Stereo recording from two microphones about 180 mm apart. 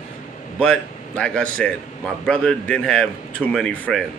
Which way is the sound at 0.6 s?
5° left (ahead or behind).